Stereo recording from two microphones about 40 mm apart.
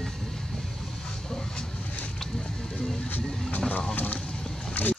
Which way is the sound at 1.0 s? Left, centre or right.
Centre.